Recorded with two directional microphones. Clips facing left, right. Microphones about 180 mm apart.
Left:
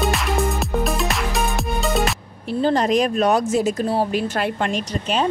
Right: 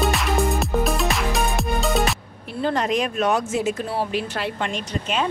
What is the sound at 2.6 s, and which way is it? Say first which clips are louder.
Speech: left 4 dB; 35° left (ahead or behind).